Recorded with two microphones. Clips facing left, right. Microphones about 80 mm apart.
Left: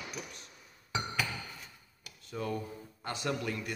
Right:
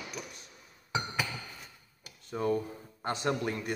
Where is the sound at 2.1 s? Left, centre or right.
Right.